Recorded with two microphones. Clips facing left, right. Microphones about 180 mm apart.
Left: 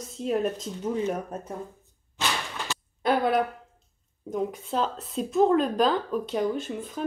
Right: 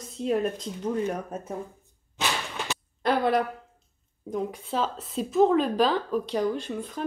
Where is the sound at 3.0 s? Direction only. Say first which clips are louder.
Even; centre (ahead or behind).